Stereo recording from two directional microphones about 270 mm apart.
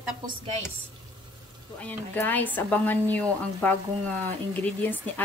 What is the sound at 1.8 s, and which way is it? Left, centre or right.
A woman's voice, centre.